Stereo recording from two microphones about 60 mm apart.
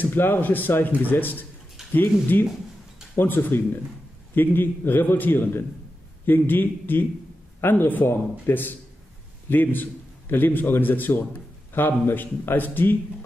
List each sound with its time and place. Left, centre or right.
0.0 s a man's voice: left